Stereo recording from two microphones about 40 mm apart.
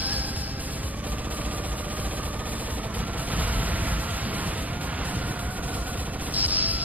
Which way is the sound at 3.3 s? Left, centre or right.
Right.